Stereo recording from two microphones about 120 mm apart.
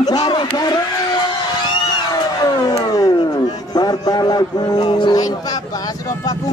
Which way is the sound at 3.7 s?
35° left (ahead or behind).